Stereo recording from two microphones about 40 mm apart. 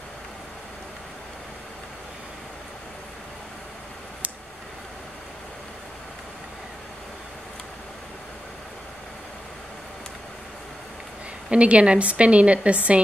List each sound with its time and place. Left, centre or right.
11.5 s a woman's voice: right